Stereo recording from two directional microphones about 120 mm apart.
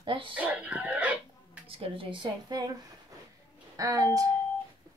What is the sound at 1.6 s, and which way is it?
Speech, 50° right (ahead or behind).